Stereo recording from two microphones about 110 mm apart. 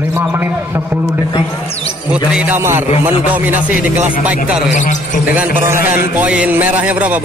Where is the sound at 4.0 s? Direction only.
15° right (ahead or behind).